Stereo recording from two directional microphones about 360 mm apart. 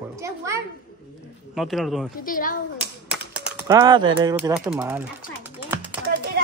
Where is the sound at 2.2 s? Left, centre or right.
Left.